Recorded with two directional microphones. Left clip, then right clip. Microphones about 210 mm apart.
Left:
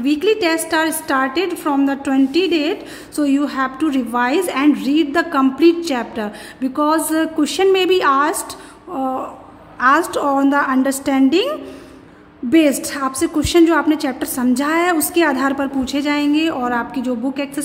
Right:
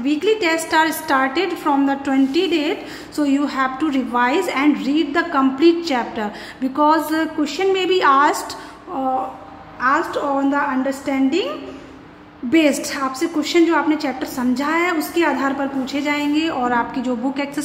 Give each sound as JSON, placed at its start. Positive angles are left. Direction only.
{"t": 0.0, "sound": "a woman's voice", "side_deg": 30}
{"t": 7.3, "sound": "a woman's voice", "side_deg": 30}